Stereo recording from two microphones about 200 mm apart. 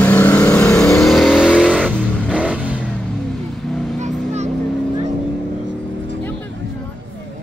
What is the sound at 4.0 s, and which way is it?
Vehicle, 35° right (ahead or behind).